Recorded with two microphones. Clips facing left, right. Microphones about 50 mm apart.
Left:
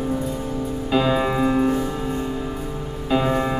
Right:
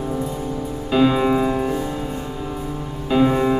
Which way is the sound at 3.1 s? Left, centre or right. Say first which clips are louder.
Right 4 dB; centre.